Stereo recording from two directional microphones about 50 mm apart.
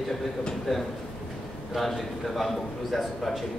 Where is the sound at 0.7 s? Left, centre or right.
Centre.